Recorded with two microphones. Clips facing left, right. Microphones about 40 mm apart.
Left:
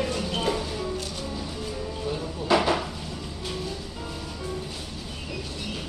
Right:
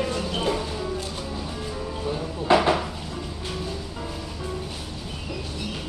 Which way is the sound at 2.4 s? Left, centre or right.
Right.